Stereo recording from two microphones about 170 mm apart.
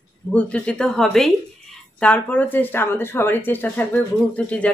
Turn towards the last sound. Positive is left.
turn(degrees=10)  # may be behind; listen again after turning